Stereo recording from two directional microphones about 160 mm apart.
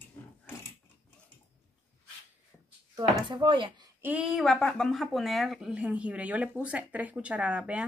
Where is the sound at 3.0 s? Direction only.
30° right (ahead or behind).